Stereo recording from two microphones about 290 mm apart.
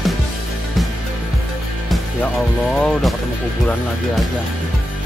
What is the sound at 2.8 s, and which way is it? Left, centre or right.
Speech, centre.